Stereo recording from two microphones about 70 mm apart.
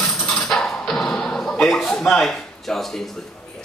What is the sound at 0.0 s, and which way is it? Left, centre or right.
Music, centre.